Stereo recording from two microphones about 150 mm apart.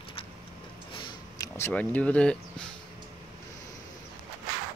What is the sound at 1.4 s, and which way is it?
Speech, 15° left (ahead or behind).